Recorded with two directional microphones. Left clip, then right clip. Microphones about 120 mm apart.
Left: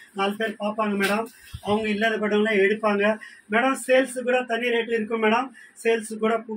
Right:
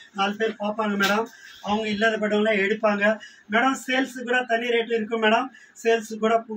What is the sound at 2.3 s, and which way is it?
Speech, centre (ahead or behind).